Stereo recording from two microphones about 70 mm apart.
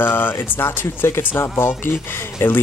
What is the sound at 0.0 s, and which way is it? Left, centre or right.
Speech, left.